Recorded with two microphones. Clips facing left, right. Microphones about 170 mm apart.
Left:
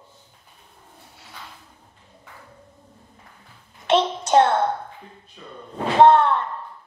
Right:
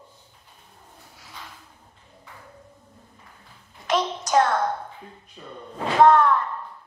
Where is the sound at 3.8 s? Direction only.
30° left (ahead or behind).